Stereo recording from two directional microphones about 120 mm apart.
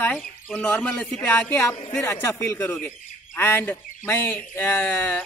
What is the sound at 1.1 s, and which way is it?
A man's voice, 25° left (ahead or behind).